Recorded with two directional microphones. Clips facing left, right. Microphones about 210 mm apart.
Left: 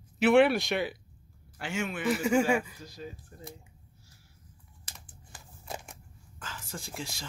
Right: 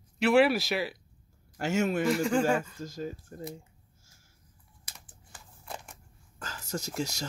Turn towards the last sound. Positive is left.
turn(degrees=-40)  # may be behind; listen again after turning